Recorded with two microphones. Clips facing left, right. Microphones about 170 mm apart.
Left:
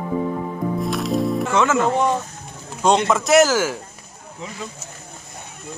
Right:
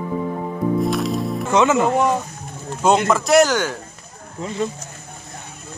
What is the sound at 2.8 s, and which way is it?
Speech, 5° right (ahead or behind).